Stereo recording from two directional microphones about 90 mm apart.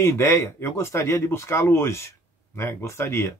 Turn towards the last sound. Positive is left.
turn(degrees=30)  # may be behind; listen again after turning